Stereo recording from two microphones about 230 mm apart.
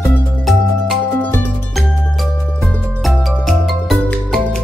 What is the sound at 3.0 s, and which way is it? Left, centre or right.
Music, centre.